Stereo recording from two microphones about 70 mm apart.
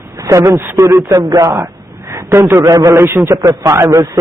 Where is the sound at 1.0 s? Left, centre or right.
Right.